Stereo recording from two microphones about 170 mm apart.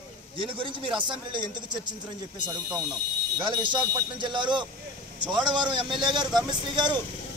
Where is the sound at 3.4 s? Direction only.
30° right (ahead or behind).